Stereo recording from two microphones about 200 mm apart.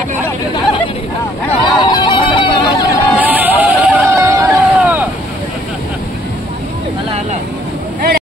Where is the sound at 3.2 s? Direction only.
10° right (ahead or behind).